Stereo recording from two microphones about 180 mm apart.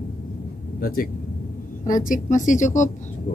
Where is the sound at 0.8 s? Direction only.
55° left (ahead or behind).